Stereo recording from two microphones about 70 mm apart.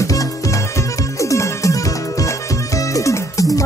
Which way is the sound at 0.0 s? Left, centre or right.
Left.